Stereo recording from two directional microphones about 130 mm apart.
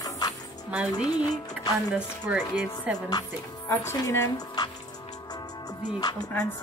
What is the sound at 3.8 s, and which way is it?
Speech, 20° left (ahead or behind).